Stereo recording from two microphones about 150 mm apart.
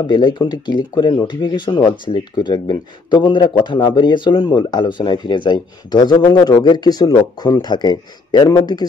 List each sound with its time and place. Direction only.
0.0 s speech: 30° left (ahead or behind)